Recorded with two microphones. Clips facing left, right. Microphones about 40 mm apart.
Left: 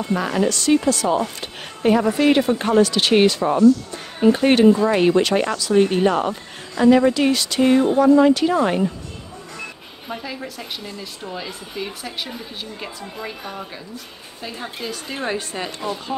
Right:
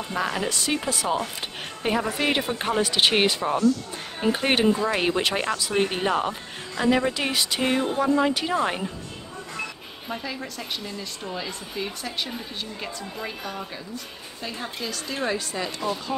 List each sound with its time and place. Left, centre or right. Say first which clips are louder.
0.0 s a woman's voice: left 6 dB; centre
5.6 s a woman's voice: left 8 dB; centre
7.2 s a woman's voice: left 7 dB; centre
10.0 s a woman's voice: left 2 dB; centre
13.4 s a woman's voice: left 1 dB; centre
14.8 s a woman's voice: left 1 dB; centre
15.3 s speech: left 2 dB; left
15.8 s speech: left 1 dB; centre